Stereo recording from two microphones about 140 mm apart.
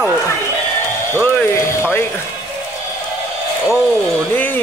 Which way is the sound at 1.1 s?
15° left (ahead or behind).